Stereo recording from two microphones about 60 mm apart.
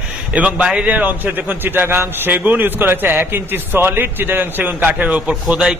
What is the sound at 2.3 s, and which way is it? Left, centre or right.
A man's voice, right.